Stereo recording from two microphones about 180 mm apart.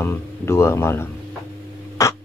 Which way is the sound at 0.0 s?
15° left (ahead or behind).